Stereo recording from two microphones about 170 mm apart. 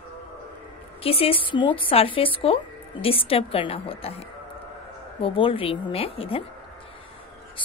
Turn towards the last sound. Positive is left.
turn(degrees=35)  # may be behind; listen again after turning